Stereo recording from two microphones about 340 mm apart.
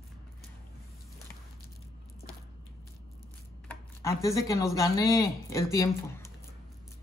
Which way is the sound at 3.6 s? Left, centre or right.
Centre.